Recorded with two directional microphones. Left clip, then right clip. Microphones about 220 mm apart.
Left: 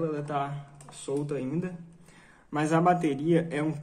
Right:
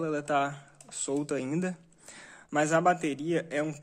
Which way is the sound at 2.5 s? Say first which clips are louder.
Even; 35° right (ahead or behind).